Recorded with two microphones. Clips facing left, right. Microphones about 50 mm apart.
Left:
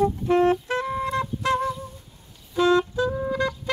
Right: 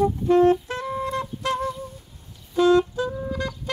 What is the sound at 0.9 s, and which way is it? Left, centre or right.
Wind instrument, left.